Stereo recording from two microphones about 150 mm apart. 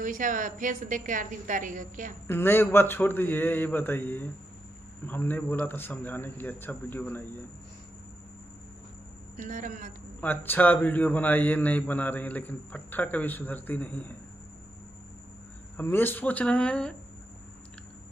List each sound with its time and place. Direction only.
0.0 s a woman's voice: 60° right (ahead or behind)
2.2 s a man's voice: 15° left (ahead or behind)
9.4 s a woman's voice: 60° right (ahead or behind)
10.2 s a man's voice: 15° left (ahead or behind)
15.7 s a man's voice: 15° left (ahead or behind)